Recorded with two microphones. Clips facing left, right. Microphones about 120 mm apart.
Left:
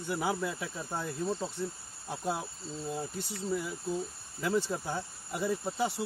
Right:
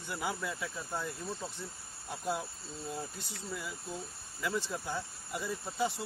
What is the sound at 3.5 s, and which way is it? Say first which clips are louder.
Speech: left 8 dB; 30° left (ahead or behind).